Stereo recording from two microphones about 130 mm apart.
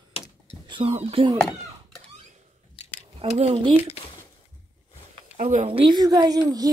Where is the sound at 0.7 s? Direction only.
45° right (ahead or behind).